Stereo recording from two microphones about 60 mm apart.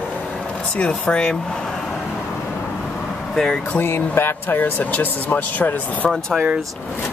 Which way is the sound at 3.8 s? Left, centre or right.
Left.